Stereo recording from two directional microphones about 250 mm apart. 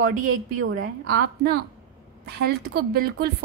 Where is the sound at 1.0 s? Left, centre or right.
Right.